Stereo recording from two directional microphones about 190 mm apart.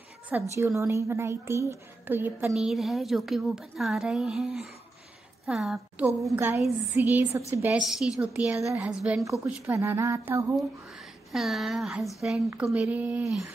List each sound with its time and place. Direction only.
0.3 s a woman's voice: 15° right (ahead or behind)
7.8 s a woman's voice: centre (ahead or behind)
11.3 s a woman's voice: centre (ahead or behind)